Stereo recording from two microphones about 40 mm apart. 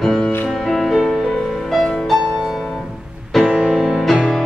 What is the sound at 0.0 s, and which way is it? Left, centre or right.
Music, centre.